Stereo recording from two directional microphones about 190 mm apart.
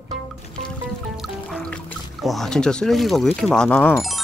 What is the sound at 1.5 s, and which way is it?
Music, centre (ahead or behind).